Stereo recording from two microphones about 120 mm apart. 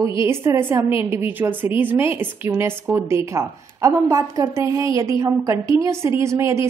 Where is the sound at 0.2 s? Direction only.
20° right (ahead or behind).